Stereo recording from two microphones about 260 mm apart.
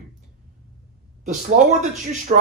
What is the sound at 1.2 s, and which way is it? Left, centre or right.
Speech, right.